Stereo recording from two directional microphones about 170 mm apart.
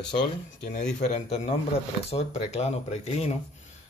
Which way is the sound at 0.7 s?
45° left (ahead or behind).